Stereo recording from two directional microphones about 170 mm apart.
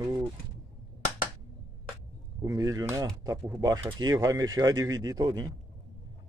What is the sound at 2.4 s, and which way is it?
Speech, 20° right (ahead or behind).